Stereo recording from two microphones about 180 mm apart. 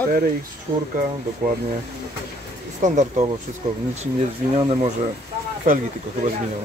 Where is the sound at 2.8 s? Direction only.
45° right (ahead or behind).